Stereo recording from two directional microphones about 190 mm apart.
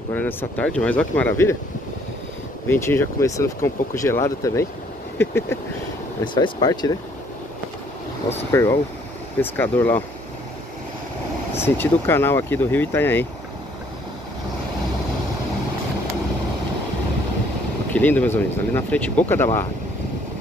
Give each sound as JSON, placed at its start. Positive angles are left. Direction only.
{"t": 0.1, "sound": "speech", "side_deg": 10}
{"t": 2.7, "sound": "speech", "side_deg": 10}
{"t": 6.2, "sound": "speech", "side_deg": 25}
{"t": 9.4, "sound": "speech", "side_deg": 10}
{"t": 11.5, "sound": "speech", "side_deg": 10}
{"t": 17.9, "sound": "speech", "side_deg": 10}